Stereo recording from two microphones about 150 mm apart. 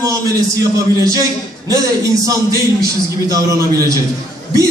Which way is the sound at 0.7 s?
25° right (ahead or behind).